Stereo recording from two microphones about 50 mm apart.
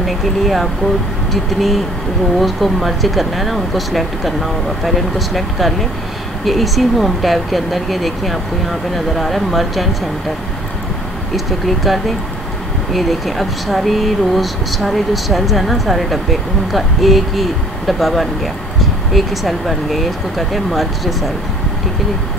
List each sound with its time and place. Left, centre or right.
0.0 s speech: centre
11.3 s speech: centre